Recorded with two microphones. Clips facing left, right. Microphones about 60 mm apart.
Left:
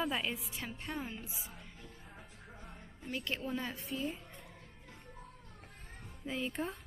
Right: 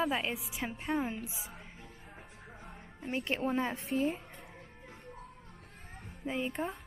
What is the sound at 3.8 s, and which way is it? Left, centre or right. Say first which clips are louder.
Speech: right 7 dB; right.